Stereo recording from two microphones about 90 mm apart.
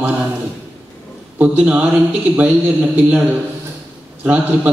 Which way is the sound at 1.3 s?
15° right (ahead or behind).